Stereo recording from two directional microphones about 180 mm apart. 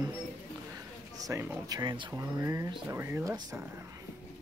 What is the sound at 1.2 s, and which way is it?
Speech, 15° right (ahead or behind).